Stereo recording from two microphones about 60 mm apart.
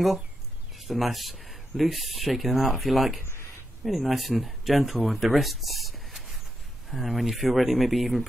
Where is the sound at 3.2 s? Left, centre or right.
Left.